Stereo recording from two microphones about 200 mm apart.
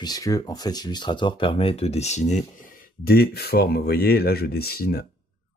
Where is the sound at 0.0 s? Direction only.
20° left (ahead or behind).